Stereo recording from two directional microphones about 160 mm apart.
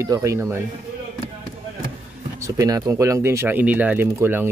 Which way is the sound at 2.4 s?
20° right (ahead or behind).